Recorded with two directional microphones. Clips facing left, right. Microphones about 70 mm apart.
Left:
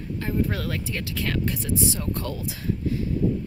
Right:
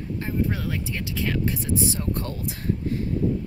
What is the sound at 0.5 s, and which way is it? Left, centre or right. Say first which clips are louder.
Speech: even; centre.